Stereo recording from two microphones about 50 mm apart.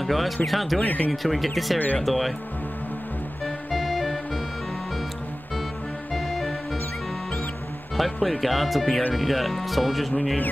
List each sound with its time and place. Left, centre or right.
0.0 s speech: centre
0.8 s speech: left
1.2 s speech: centre
3.4 s music: centre
6.1 s music: centre
8.0 s speech: centre